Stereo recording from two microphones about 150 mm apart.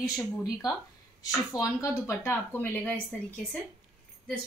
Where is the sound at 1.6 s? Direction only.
20° left (ahead or behind).